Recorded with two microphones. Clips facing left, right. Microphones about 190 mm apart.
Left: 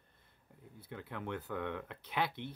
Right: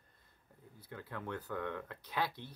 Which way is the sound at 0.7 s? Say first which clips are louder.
Left 1 dB; 25° left (ahead or behind).